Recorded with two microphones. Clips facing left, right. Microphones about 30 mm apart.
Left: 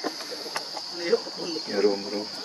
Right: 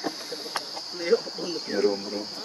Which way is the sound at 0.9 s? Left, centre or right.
Centre.